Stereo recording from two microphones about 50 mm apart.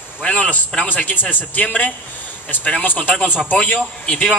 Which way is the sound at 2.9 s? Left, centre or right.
Left.